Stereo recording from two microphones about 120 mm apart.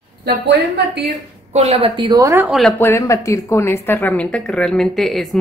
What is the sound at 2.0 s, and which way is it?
Speech, 30° right (ahead or behind).